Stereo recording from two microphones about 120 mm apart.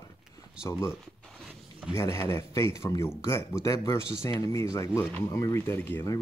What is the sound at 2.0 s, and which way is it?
Speech, 25° left (ahead or behind).